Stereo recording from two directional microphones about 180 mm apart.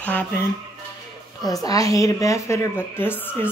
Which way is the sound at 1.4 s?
20° left (ahead or behind).